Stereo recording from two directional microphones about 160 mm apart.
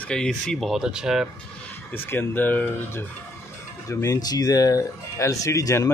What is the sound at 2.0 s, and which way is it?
Speech, 10° left (ahead or behind).